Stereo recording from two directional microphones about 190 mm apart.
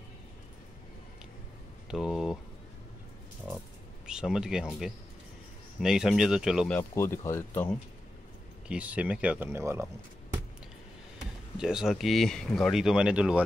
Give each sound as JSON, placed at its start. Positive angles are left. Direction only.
{"t": 1.9, "sound": "speech", "side_deg": 0}
{"t": 4.0, "sound": "speech", "side_deg": -5}
{"t": 6.8, "sound": "speech", "side_deg": 15}
{"t": 8.6, "sound": "speech", "side_deg": -5}
{"t": 11.5, "sound": "speech", "side_deg": -5}